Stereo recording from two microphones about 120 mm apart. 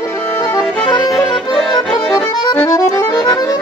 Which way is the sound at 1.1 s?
Centre (ahead or behind).